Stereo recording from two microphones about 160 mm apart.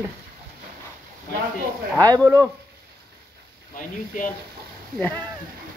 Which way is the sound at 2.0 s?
20° right (ahead or behind).